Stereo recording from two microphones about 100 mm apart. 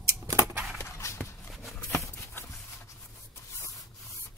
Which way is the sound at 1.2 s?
5° left (ahead or behind).